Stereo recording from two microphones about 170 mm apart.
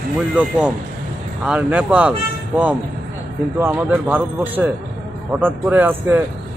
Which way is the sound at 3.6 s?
10° right (ahead or behind).